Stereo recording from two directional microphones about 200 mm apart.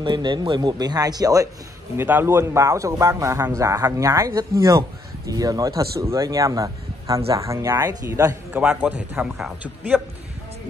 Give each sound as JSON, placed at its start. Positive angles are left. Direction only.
{"t": 0.0, "sound": "speech", "side_deg": -25}